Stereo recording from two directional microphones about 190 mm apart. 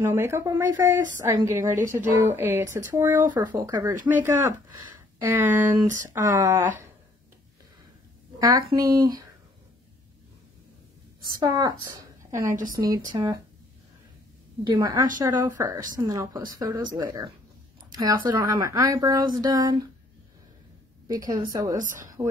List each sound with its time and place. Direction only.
0.0 s speech: 15° right (ahead or behind)
8.7 s speech: 20° right (ahead or behind)
11.3 s a woman's voice: 20° right (ahead or behind)
14.6 s speech: 20° right (ahead or behind)
21.1 s speech: 20° right (ahead or behind)
21.7 s a woman's voice: 45° right (ahead or behind)